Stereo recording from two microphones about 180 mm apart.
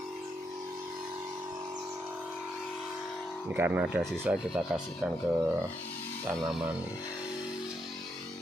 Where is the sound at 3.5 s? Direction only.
10° right (ahead or behind).